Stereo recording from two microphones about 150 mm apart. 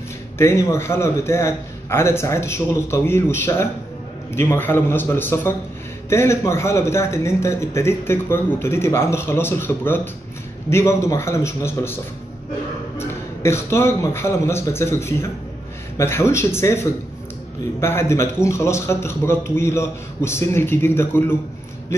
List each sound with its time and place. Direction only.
0.4 s a man's voice: 20° left (ahead or behind)